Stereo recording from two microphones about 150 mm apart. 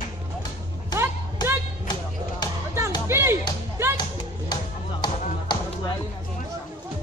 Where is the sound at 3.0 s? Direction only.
15° right (ahead or behind).